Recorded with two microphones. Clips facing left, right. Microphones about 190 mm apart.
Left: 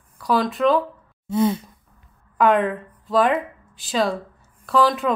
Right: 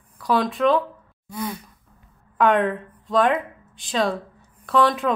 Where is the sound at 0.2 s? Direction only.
Centre (ahead or behind).